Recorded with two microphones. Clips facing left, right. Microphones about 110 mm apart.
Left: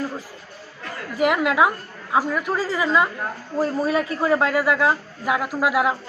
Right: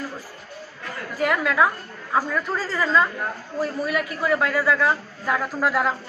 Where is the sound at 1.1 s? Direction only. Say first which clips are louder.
Left 3 dB; 20° left (ahead or behind).